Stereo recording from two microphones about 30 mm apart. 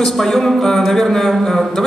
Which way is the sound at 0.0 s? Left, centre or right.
Centre.